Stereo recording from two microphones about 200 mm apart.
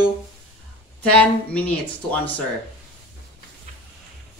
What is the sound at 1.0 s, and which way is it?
Speech, 5° left (ahead or behind).